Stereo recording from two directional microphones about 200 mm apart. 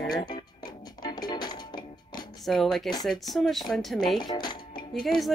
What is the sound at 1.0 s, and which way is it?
Music, 20° left (ahead or behind).